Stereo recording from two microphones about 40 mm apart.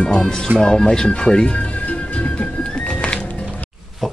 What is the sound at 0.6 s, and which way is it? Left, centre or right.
Music, left.